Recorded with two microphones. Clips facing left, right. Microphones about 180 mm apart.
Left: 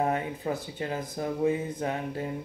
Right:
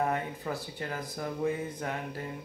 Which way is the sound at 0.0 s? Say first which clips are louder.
Left 3 dB; 20° left (ahead or behind).